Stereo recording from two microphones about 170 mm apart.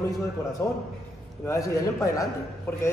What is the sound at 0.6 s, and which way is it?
A man's voice, 15° left (ahead or behind).